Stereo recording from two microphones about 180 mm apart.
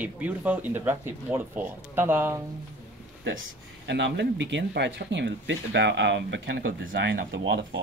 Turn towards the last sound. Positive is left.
turn(degrees=-85)